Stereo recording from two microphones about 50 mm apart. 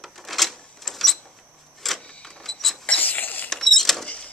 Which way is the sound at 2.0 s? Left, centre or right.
Centre.